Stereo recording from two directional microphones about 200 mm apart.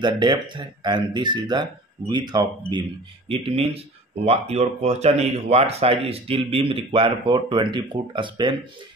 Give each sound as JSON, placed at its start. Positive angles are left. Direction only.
{"t": 0.0, "sound": "speech", "side_deg": -20}